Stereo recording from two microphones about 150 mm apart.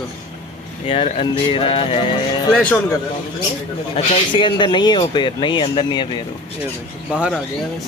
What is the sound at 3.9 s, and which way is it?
Speech, 40° left (ahead or behind).